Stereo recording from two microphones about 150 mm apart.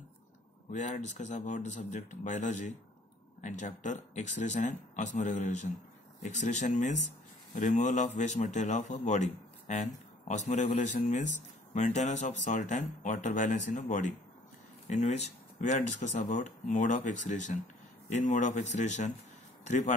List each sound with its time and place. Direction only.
0.7 s speech: 50° left (ahead or behind)